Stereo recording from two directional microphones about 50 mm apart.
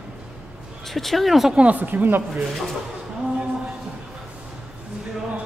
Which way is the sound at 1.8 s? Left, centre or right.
Right.